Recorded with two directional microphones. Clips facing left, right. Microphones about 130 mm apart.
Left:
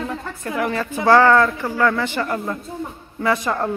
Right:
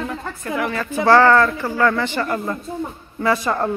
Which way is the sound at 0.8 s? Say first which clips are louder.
Right 1 dB; 15° left (ahead or behind).